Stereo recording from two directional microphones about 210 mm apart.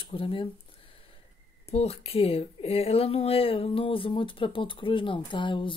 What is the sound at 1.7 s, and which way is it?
A woman's voice, 30° left (ahead or behind).